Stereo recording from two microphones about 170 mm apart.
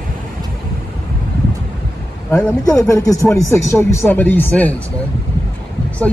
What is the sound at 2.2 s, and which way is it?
Speech, 5° left (ahead or behind).